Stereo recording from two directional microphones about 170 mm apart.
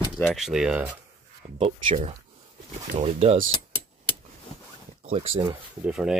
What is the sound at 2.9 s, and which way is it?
Speech, 40° right (ahead or behind).